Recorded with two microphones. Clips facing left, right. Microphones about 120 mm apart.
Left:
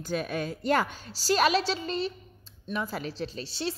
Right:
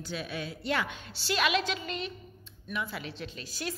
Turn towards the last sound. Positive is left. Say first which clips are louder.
# left 4 dB
turn(degrees=30)  # may be behind; listen again after turning